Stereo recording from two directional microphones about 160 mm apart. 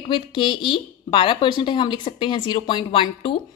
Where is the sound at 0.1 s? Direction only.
30° left (ahead or behind).